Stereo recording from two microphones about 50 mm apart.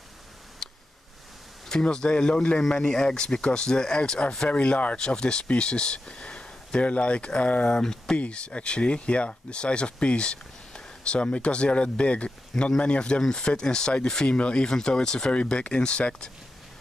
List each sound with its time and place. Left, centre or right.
0.6 s a sound: centre
1.7 s speech: centre
4.5 s speech: left
4.9 s speech: centre